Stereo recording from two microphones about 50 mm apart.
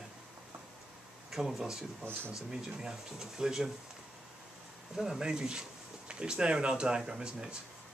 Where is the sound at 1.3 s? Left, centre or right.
Centre.